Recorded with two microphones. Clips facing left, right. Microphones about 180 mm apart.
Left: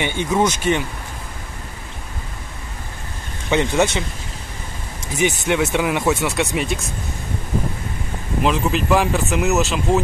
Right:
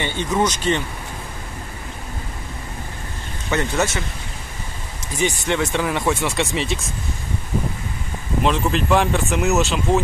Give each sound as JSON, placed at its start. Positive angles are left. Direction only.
{"t": 0.0, "sound": "speech", "side_deg": 10}
{"t": 3.4, "sound": "speech", "side_deg": 15}
{"t": 5.2, "sound": "speech", "side_deg": 10}
{"t": 8.4, "sound": "speech", "side_deg": 0}